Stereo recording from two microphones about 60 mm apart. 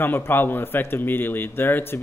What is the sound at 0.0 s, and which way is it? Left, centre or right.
A man's voice, left.